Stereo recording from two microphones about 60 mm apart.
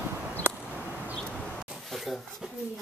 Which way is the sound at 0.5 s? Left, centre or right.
Right.